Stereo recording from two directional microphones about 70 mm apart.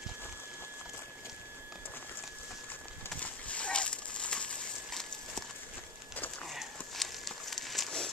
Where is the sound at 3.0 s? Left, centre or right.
Centre.